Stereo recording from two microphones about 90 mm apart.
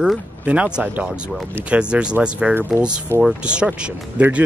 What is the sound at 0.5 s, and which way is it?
Speech, 10° right (ahead or behind).